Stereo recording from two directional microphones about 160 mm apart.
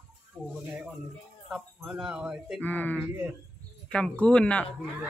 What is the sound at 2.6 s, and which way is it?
Speech, 10° left (ahead or behind).